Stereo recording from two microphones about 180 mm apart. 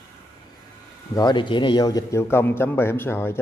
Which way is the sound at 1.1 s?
25° left (ahead or behind).